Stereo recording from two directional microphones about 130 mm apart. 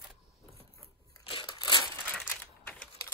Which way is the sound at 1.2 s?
40° left (ahead or behind).